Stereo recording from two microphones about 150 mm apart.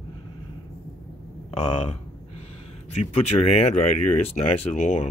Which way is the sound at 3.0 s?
45° left (ahead or behind).